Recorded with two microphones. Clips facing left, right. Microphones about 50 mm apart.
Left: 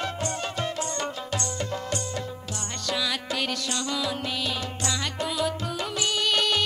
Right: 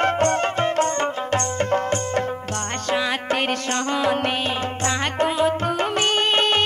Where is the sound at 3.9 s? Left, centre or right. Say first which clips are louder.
Right 10 dB; right.